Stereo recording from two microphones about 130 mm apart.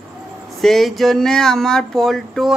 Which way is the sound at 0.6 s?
Centre (ahead or behind).